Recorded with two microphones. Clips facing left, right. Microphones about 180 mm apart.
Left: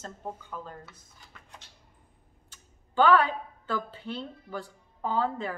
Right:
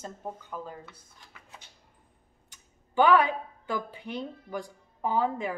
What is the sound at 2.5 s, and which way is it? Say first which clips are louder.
A woman's voice: right 2 dB; 15° right (ahead or behind).